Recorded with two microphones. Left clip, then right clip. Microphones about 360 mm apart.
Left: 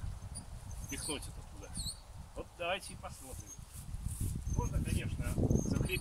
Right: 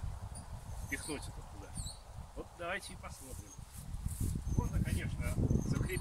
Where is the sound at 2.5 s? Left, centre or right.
Centre.